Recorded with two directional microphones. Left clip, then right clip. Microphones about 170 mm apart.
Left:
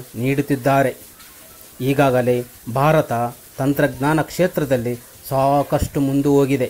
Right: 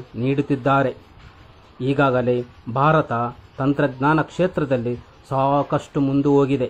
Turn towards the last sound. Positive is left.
turn(degrees=15)  # may be behind; listen again after turning